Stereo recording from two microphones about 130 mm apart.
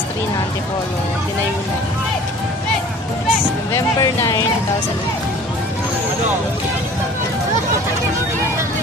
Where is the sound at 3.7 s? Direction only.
25° left (ahead or behind).